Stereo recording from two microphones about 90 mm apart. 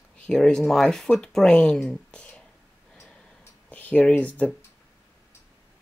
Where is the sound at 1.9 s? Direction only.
10° left (ahead or behind).